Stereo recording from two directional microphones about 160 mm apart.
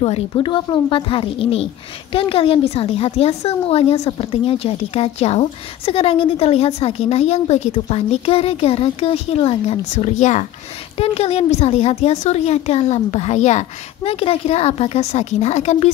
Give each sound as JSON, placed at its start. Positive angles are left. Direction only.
{"t": 0.0, "sound": "a woman's voice", "side_deg": 35}